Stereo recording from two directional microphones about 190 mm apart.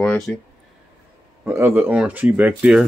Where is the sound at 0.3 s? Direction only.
5° left (ahead or behind).